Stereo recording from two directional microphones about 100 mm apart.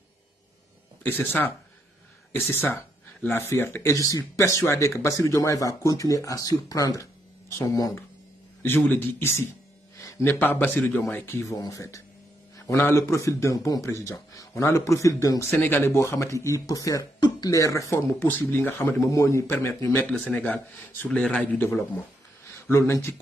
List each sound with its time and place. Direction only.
1.0 s a man's voice: 20° left (ahead or behind); by 8.0 s 35° left (ahead or behind)
8.6 s a man's voice: 20° left (ahead or behind)
19.0 s a man's voice: 30° left (ahead or behind)
20.2 s speech: 15° left (ahead or behind)
21.5 s a man's voice: 20° left (ahead or behind)